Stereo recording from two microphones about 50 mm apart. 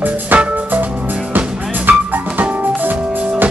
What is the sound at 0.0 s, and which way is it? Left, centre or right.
Music, right.